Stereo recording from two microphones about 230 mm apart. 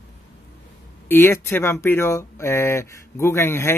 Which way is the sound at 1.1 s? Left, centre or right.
Centre.